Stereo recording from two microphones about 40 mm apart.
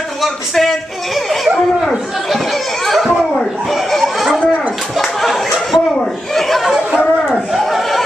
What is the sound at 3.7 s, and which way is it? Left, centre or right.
Goat, centre.